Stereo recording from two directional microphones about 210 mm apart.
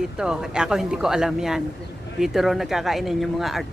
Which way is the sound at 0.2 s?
5° right (ahead or behind).